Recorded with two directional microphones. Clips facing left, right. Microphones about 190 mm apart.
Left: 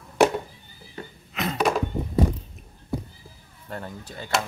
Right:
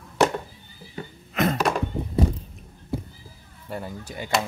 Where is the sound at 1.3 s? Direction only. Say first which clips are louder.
Right 6 dB; 50° right (ahead or behind).